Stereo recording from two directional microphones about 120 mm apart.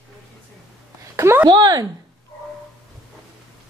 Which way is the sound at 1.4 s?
35° right (ahead or behind).